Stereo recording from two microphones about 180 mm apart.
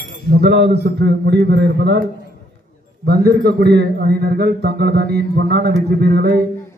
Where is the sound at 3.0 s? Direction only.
60° right (ahead or behind).